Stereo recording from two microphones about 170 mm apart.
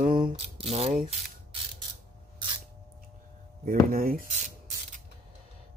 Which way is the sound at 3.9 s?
60° right (ahead or behind).